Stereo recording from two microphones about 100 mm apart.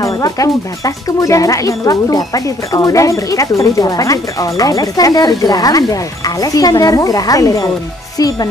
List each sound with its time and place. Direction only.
0.2 s speech: 35° left (ahead or behind)